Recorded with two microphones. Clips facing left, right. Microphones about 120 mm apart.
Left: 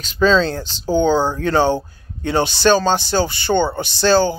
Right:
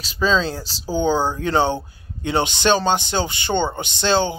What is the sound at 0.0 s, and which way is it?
Speech, 5° right (ahead or behind).